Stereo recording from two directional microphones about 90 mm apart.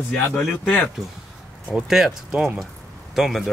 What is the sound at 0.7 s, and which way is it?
Speech, 20° left (ahead or behind).